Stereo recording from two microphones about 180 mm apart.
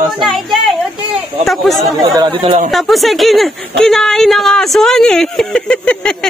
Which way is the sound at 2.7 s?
Centre (ahead or behind).